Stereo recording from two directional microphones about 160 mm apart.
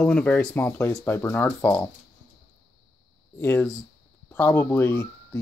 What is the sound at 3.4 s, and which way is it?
Speech, 15° left (ahead or behind).